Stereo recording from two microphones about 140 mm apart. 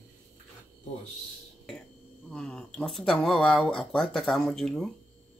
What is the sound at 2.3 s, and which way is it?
Speech, 10° left (ahead or behind).